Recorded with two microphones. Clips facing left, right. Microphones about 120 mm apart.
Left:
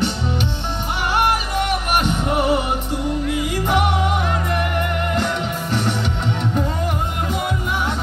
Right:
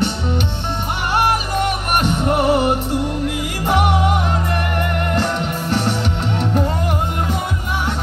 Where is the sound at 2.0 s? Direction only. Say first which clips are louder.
Right 2 dB; 60° right (ahead or behind).